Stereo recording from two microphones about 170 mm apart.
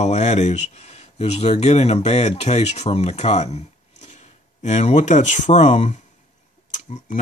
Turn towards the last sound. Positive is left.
turn(degrees=45)  # may be behind; listen again after turning